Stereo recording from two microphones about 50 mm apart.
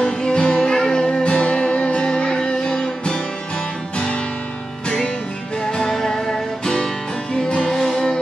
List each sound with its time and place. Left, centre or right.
0.0 s music: centre
4.8 s music: centre